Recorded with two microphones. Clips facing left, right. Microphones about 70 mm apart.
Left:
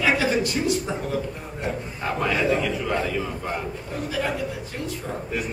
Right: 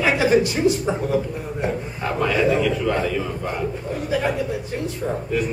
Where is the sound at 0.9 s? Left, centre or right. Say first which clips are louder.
Right 6 dB; centre.